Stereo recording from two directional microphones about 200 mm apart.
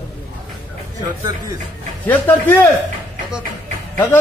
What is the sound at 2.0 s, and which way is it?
Speech, 10° left (ahead or behind).